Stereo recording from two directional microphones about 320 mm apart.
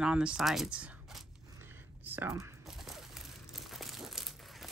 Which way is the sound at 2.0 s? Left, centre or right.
Centre.